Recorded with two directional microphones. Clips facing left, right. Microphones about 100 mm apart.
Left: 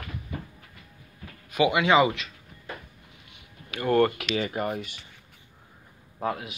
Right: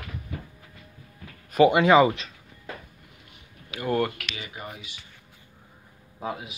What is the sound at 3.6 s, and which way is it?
Speech, 15° right (ahead or behind).